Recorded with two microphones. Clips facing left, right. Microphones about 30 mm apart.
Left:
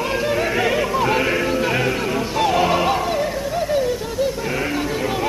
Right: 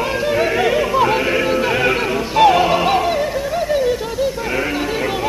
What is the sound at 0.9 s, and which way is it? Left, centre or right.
Music, centre.